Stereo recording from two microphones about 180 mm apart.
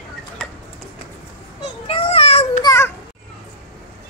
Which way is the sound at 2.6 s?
15° left (ahead or behind).